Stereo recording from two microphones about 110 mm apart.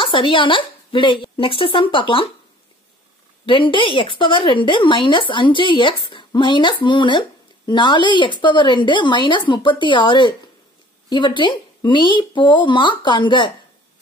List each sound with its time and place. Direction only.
0.0 s speech: 50° left (ahead or behind)
3.4 s speech: 50° left (ahead or behind)